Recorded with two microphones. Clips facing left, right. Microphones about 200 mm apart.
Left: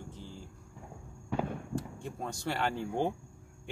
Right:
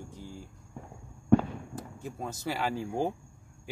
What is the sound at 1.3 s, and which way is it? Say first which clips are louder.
Fireworks: right 11 dB; 50° right (ahead or behind).